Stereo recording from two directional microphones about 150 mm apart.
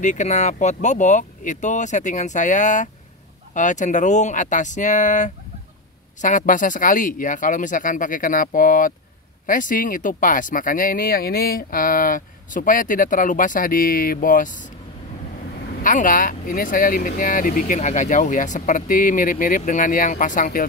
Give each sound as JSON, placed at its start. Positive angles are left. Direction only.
{"t": 0.0, "sound": "speech", "side_deg": 55}
{"t": 15.8, "sound": "speech", "side_deg": 60}